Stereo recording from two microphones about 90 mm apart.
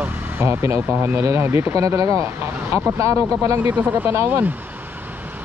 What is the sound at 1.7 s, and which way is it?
Speech, 40° right (ahead or behind).